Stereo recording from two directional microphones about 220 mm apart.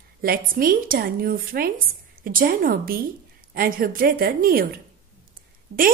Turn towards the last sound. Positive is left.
turn(degrees=-70)  # may be behind; listen again after turning